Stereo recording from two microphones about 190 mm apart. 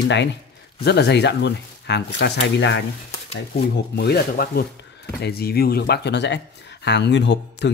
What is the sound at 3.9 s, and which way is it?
Speech, 55° left (ahead or behind).